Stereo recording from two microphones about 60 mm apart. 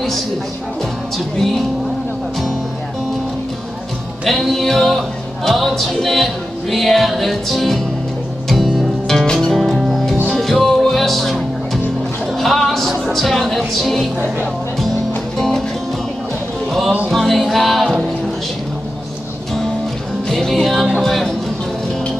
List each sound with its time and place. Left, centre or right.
1.1 s music: centre
4.2 s music: centre
15.3 s music: centre
17.1 s music: centre
20.2 s music: centre